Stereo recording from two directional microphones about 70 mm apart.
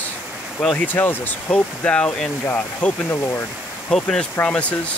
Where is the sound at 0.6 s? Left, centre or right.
Centre.